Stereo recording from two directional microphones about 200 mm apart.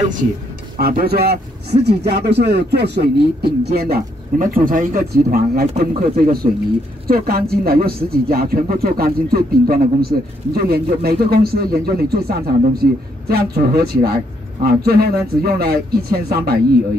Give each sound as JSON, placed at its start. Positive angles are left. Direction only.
{"t": 0.7, "sound": "speech", "side_deg": -50}